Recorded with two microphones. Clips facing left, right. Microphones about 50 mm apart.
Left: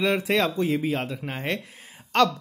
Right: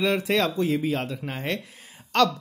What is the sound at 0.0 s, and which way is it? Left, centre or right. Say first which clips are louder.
Speech: even; centre.